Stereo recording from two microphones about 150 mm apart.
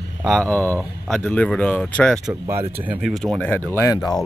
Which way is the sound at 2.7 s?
10° right (ahead or behind).